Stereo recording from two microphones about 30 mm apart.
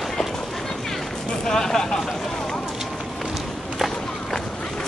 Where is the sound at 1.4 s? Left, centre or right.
Centre.